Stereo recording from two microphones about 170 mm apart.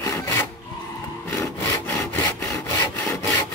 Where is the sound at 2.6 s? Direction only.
15° left (ahead or behind).